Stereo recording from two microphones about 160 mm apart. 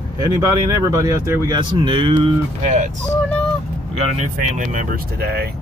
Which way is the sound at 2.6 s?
50° right (ahead or behind).